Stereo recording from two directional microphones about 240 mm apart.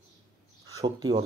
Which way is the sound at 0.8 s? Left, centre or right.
Centre.